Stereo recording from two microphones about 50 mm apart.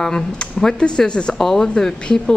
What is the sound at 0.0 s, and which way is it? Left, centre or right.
Speech, centre.